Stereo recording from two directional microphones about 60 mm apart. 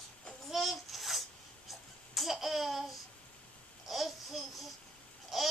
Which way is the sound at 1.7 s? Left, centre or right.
Centre.